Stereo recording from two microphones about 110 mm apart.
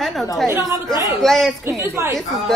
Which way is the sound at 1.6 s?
25° right (ahead or behind).